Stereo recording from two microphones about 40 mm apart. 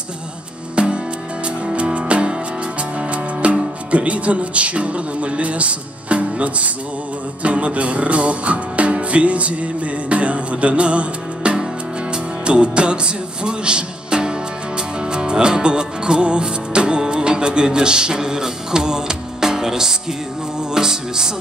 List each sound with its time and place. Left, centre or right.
0.7 s music: right
3.0 s speech: right
7.4 s music: right; by 21.3 s centre